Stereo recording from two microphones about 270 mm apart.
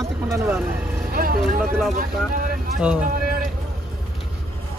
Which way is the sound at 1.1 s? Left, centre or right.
Right.